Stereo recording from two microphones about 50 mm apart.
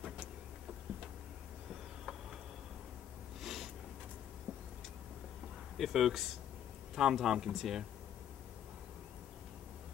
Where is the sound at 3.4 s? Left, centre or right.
Centre.